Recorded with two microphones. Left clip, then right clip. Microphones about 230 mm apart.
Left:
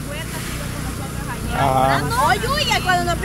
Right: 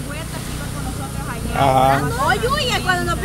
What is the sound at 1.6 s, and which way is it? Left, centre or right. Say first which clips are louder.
Speech: right 2 dB; centre.